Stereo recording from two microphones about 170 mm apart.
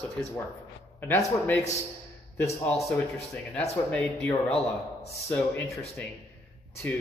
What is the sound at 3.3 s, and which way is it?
A man's voice, 5° left (ahead or behind).